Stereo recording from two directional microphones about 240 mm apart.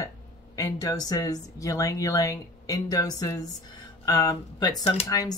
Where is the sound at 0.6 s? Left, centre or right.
Centre.